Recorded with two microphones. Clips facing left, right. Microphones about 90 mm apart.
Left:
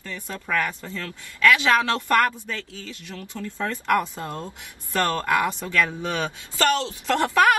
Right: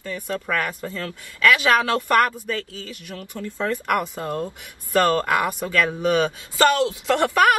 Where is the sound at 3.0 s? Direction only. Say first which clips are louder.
Right 1 dB; 15° right (ahead or behind).